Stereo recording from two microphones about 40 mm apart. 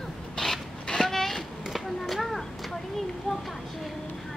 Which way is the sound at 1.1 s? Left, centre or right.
Centre.